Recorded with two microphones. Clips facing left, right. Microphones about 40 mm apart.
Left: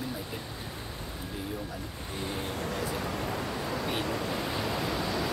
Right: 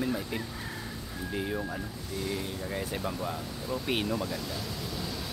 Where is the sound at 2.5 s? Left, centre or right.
Left.